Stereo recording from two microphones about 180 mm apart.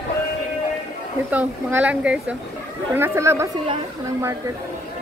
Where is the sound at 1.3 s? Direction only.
10° right (ahead or behind).